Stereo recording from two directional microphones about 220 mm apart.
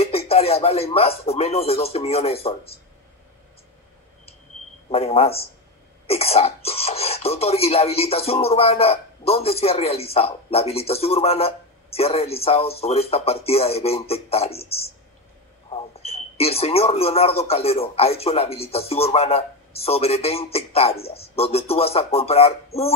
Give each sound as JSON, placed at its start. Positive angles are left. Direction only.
{"t": 0.0, "sound": "speech", "side_deg": 25}
{"t": 4.8, "sound": "speech", "side_deg": 25}